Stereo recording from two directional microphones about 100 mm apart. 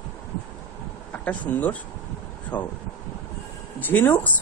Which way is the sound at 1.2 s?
15° left (ahead or behind).